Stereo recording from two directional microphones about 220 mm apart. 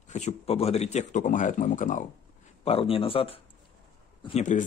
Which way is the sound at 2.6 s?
25° left (ahead or behind).